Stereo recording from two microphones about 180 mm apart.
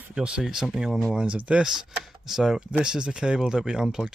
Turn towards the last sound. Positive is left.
turn(degrees=-5)  # may be behind; listen again after turning